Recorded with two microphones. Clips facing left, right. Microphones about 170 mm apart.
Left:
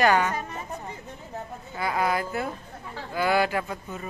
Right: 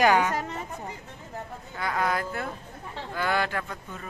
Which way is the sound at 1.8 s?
10° left (ahead or behind).